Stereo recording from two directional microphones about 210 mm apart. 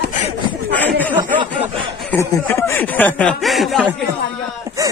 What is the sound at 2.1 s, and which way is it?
Speech, 15° left (ahead or behind).